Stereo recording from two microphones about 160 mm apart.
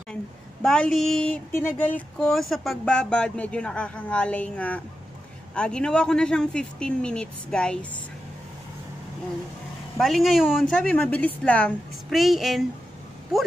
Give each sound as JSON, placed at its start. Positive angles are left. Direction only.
{"t": 0.1, "sound": "speech", "side_deg": 5}
{"t": 9.9, "sound": "speech", "side_deg": 0}